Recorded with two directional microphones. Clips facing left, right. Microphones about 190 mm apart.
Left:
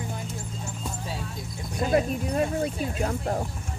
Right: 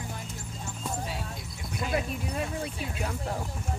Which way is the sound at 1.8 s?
40° left (ahead or behind).